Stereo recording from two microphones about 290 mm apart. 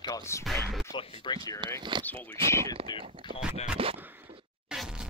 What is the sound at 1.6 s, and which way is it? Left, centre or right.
Speech, centre.